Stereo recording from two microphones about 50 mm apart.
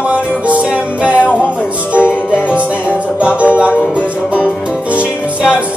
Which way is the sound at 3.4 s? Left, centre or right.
Right.